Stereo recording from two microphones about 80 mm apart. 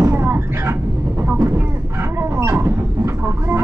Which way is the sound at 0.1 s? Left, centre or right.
Right.